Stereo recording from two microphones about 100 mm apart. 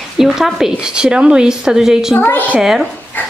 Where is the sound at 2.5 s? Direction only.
5° right (ahead or behind).